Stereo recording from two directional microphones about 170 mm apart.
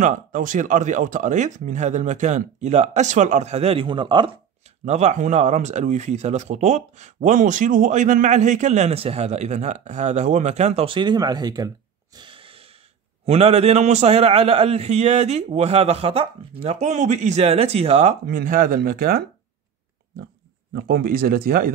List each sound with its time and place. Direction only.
0.0 s speech: 50° right (ahead or behind); by 4.3 s 30° right (ahead or behind)
4.8 s a man's voice: 40° right (ahead or behind)
18.2 s speech: 55° right (ahead or behind)
20.7 s speech: 70° right (ahead or behind)